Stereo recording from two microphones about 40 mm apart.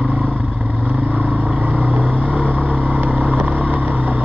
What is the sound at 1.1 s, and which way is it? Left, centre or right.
Vehicle, right.